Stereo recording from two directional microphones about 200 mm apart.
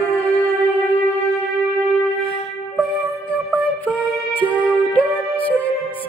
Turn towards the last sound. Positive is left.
turn(degrees=5)  # may be behind; listen again after turning